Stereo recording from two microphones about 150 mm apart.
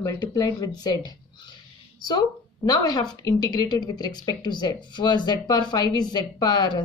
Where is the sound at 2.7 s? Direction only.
25° left (ahead or behind).